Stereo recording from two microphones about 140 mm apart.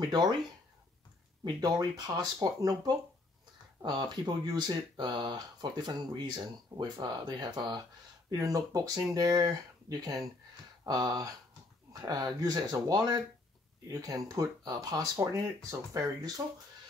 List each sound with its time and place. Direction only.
0.0 s speech: 30° right (ahead or behind)
1.4 s speech: 30° right (ahead or behind)